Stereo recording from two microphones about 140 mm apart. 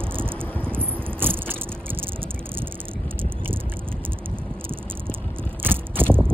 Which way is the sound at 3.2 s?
40° right (ahead or behind).